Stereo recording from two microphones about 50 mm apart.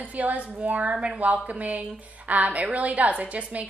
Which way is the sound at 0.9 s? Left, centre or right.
Centre.